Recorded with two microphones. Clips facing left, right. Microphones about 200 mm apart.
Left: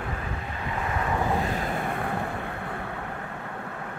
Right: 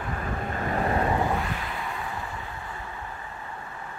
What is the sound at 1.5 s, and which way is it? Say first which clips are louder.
Vehicle: left 5 dB; 45° left (ahead or behind).